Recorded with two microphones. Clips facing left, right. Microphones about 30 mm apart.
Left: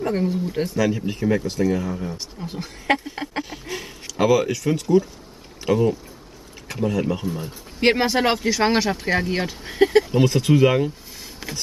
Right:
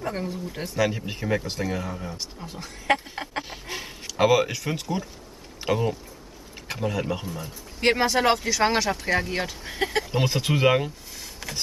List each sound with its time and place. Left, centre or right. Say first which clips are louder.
0.0 s speech: left 7 dB; centre
0.7 s speech: even; centre
2.4 s speech: left 6 dB; left
3.4 s a sound: left 3 dB; centre
4.1 s speech: left 2 dB; centre
7.3 s speech: left 6 dB; centre
10.1 s speech: left 7 dB; centre
11.1 s a sound: left 2 dB; centre